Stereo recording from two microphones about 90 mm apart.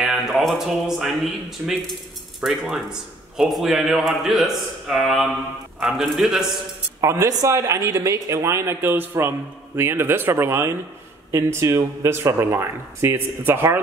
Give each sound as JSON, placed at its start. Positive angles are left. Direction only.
{"t": 0.0, "sound": "a man's voice", "side_deg": -5}
{"t": 7.0, "sound": "speech", "side_deg": -35}